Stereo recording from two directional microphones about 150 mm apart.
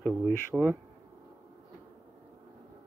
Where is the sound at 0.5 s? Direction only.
5° right (ahead or behind).